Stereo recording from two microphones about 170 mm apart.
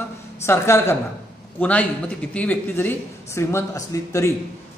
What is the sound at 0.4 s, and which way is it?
Speech, 15° left (ahead or behind).